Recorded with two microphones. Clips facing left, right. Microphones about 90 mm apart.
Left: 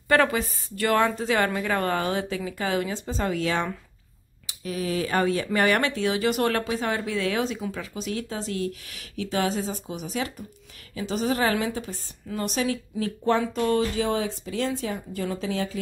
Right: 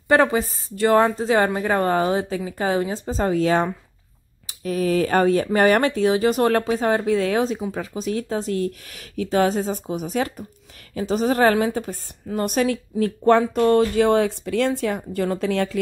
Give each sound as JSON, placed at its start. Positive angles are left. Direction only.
{"t": 0.1, "sound": "a woman's voice", "side_deg": -30}